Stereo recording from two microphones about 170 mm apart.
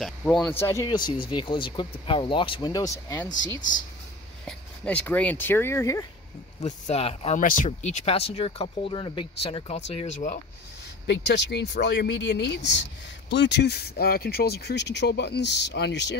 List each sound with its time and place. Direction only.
0.0 s speech: 5° left (ahead or behind)
0.8 s speech: 25° left (ahead or behind)
4.5 s speech: 5° left (ahead or behind)
6.6 s speech: 40° left (ahead or behind)
7.3 s speech: 50° left (ahead or behind)
11.1 s speech: 85° left